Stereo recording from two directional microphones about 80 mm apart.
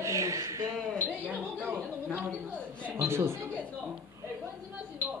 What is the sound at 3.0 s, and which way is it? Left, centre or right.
Speech, right.